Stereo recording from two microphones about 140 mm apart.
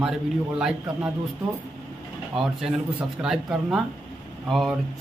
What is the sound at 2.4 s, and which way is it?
Speech, centre (ahead or behind).